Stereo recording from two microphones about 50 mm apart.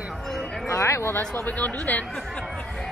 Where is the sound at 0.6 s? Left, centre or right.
Left.